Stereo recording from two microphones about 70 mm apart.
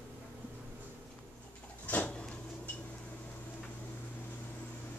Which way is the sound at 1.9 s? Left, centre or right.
Centre.